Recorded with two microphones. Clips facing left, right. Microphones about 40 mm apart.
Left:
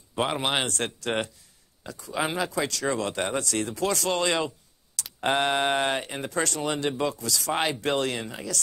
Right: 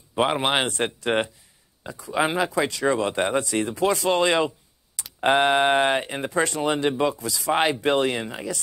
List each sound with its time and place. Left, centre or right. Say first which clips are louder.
0.1 s speech: right 4 dB; centre